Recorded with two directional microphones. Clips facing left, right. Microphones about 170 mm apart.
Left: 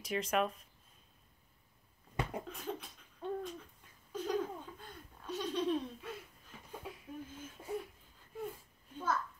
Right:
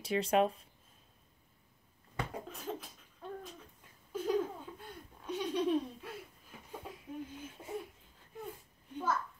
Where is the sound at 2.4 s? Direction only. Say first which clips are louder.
Even; centre (ahead or behind).